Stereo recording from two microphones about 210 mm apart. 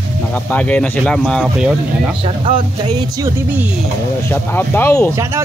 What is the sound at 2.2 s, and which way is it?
Speech, 25° right (ahead or behind).